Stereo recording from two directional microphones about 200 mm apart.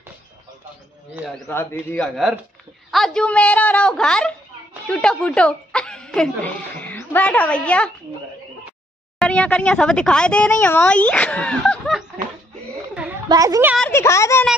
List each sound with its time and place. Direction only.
1.1 s speech: centre (ahead or behind)
1.5 s a child's voice: 10° left (ahead or behind)
9.2 s speech: 5° left (ahead or behind)
13.3 s a woman's voice: 15° right (ahead or behind)
13.7 s a child's voice: 10° left (ahead or behind)